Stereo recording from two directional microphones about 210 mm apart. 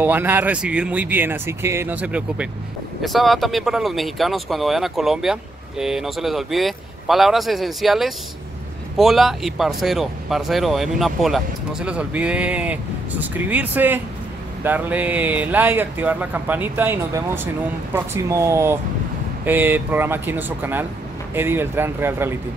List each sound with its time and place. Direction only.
0.0 s speech: 10° right (ahead or behind)